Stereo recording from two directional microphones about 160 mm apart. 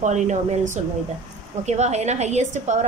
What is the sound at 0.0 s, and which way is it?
A woman's voice, 45° right (ahead or behind).